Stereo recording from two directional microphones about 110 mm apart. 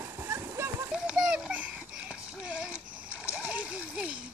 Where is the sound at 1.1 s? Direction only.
10° right (ahead or behind).